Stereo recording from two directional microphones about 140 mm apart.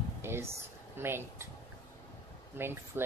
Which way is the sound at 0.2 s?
15° right (ahead or behind).